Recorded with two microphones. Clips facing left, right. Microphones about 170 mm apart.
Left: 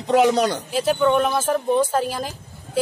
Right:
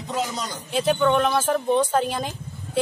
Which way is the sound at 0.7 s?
Centre (ahead or behind).